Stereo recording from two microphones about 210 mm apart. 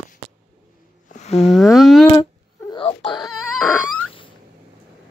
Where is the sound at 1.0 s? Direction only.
35° left (ahead or behind).